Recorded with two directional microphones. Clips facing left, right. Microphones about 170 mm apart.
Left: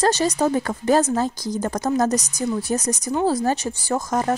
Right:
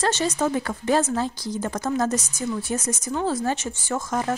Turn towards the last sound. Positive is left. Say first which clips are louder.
# left 3 dB
turn(degrees=40)  # may be behind; listen again after turning